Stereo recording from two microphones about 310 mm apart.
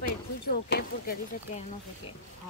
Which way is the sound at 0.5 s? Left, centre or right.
Left.